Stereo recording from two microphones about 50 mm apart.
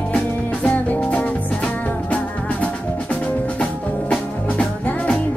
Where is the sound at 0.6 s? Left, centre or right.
Left.